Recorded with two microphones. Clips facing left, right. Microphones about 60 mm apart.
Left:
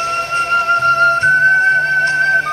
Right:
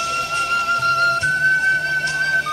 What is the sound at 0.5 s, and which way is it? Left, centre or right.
Music, left.